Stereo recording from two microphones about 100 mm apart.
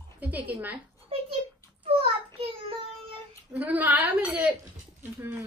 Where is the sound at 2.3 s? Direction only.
65° right (ahead or behind).